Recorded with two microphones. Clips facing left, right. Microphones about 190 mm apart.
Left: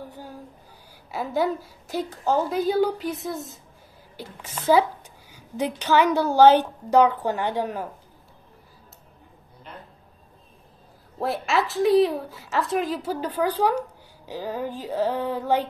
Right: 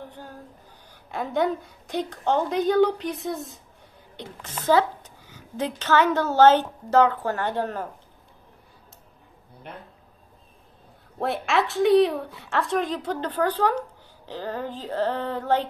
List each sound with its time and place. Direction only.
0.1 s a woman's voice: 10° left (ahead or behind)
9.7 s a sound: 60° right (ahead or behind)
11.1 s speech: centre (ahead or behind)